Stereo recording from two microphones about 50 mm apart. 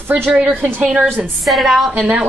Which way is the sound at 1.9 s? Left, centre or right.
Right.